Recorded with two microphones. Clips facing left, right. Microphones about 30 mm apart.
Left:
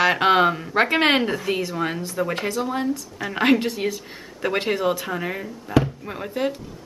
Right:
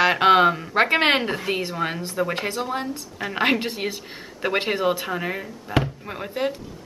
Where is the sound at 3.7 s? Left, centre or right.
Right.